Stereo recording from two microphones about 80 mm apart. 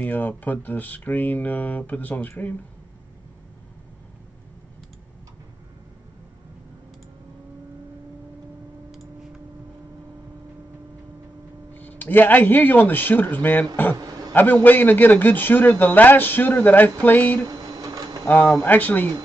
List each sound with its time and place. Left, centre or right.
0.0 s speech: left
11.7 s speech: left
13.9 s a sound: right
14.3 s speech: left
17.5 s a sound: right
18.2 s speech: left